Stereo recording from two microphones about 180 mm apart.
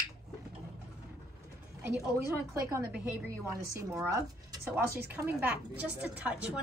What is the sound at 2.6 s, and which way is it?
A woman's voice, 15° right (ahead or behind).